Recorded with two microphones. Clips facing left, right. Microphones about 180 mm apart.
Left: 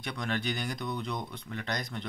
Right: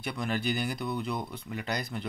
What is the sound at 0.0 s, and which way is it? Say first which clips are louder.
Speech: right 2 dB; 5° right (ahead or behind).